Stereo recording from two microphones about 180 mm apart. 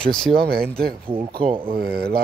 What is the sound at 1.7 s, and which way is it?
Speech, 60° right (ahead or behind).